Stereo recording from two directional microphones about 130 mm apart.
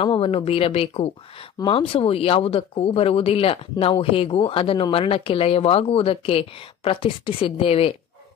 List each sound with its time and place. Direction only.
0.0 s a woman's voice: 45° left (ahead or behind)
1.6 s a woman's voice: 40° left (ahead or behind)